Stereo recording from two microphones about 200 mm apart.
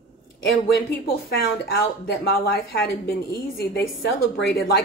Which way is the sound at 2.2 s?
50° left (ahead or behind).